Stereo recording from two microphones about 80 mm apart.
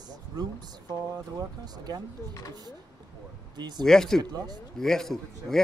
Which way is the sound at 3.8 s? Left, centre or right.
Centre.